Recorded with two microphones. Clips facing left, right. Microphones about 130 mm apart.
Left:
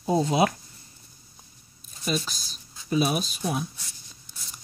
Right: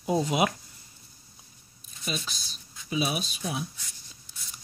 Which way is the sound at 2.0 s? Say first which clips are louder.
Left 6 dB; 40° left (ahead or behind).